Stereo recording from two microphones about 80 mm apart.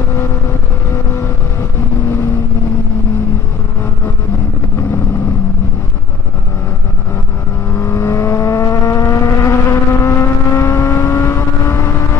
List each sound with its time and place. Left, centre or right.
7.7 s vehicle: left